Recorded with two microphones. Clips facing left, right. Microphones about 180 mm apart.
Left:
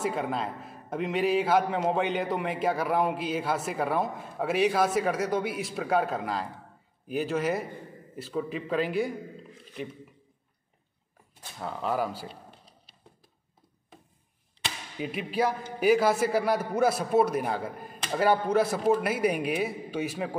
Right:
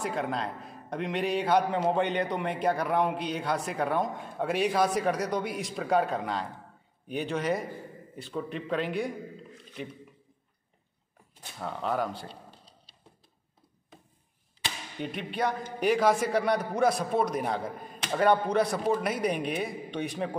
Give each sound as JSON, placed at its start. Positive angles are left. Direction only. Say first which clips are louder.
{"t": 0.0, "sound": "a man's voice", "louder": "left 2 dB", "side_deg": 5}
{"t": 11.6, "sound": "a man's voice", "louder": "left 1 dB", "side_deg": 0}
{"t": 12.3, "sound": "a sound", "louder": "left 1 dB", "side_deg": -30}
{"t": 15.0, "sound": "a man's voice", "louder": "left 3 dB", "side_deg": 5}